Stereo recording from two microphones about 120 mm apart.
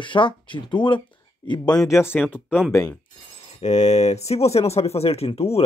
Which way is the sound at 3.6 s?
70° left (ahead or behind).